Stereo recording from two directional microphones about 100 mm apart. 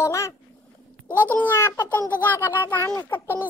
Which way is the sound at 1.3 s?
20° left (ahead or behind).